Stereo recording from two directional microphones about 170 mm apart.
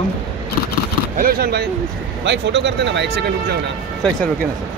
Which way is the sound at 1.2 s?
65° right (ahead or behind).